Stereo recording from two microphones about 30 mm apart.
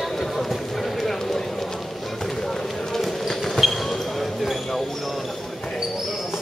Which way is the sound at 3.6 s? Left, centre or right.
Left.